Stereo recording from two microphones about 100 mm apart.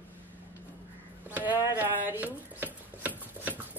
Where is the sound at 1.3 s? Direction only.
25° right (ahead or behind).